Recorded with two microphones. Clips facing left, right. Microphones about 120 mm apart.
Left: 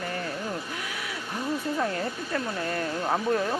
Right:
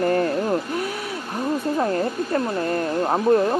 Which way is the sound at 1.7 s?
35° right (ahead or behind).